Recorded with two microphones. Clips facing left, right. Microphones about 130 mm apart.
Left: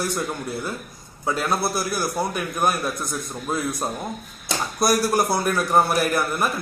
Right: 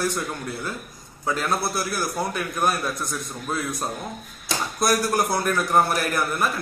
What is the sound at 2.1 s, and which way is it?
Speech, 5° left (ahead or behind).